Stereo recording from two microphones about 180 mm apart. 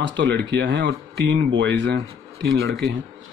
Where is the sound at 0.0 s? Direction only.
80° right.